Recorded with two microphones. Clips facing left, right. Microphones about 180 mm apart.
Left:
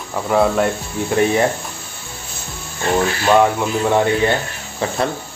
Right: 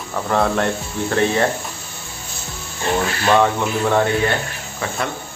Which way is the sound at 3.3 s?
10° left (ahead or behind).